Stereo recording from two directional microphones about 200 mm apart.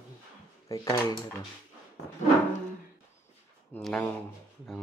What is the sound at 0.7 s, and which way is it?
Speech, 15° left (ahead or behind).